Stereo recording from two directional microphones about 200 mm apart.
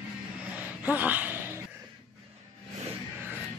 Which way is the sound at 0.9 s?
10° right (ahead or behind).